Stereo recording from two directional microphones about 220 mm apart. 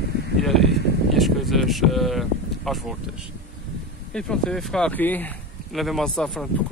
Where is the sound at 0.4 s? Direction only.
Centre (ahead or behind).